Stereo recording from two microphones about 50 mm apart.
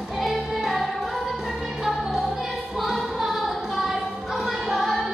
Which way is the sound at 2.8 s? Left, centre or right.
Centre.